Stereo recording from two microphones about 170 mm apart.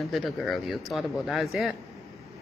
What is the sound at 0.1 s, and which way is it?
Speech, centre (ahead or behind).